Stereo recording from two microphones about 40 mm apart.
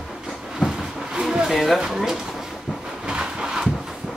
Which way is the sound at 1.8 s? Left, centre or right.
Centre.